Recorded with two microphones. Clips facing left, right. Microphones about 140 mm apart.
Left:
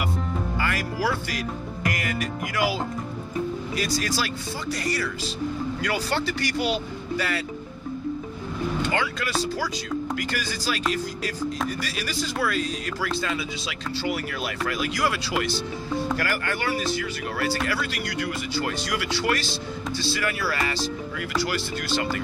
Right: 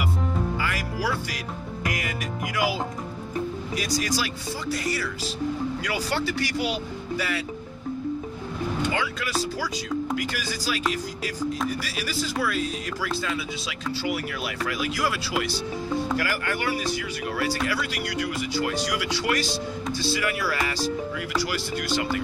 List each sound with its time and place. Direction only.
0.6 s music: 5° right (ahead or behind)
1.9 s speech: 10° right (ahead or behind)
3.7 s speech: 10° right (ahead or behind)
8.8 s speech: 5° right (ahead or behind)